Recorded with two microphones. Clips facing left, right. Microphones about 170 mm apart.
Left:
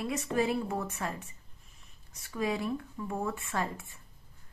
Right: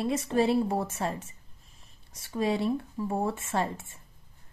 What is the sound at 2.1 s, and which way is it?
A woman's voice, 30° right (ahead or behind).